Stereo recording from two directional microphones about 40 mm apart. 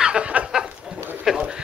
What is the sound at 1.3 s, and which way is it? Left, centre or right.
Duck, centre.